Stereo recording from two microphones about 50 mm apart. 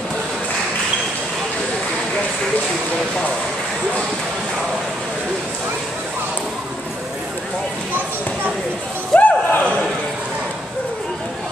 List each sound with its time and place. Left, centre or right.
9.1 s music: left